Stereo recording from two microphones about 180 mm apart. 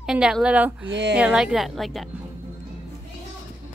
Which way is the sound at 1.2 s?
5° right (ahead or behind).